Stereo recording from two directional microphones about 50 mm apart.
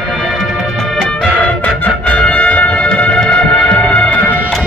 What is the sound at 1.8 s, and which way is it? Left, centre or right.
Music, left.